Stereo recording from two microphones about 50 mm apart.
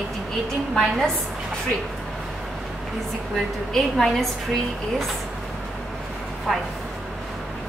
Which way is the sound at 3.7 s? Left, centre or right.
Centre.